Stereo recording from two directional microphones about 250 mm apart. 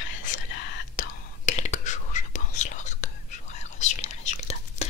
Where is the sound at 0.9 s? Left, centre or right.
Left.